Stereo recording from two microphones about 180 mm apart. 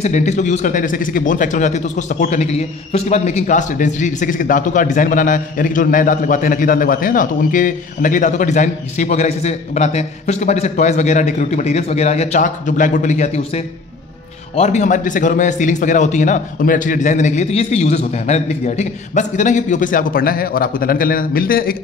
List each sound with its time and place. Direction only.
0.0 s speech: 40° left (ahead or behind)
14.5 s speech: 35° left (ahead or behind); by 21.7 s 55° left (ahead or behind)